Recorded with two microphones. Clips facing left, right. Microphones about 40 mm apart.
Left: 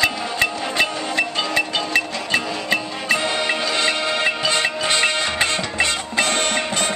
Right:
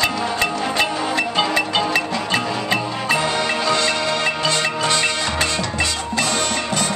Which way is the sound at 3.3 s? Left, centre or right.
Centre.